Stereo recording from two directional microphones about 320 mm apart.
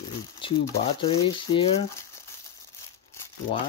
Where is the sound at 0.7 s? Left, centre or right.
Centre.